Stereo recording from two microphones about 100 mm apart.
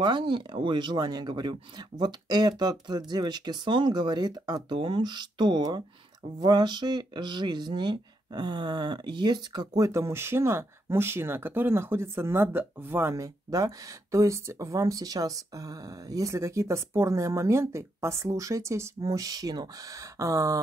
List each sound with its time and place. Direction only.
0.0 s speech: 50° right (ahead or behind); by 20.6 s 35° right (ahead or behind)